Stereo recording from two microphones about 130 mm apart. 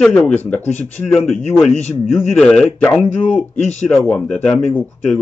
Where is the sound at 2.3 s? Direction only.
Centre (ahead or behind).